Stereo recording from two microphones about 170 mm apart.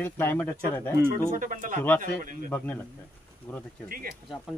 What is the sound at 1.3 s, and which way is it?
A man's voice, 50° right (ahead or behind).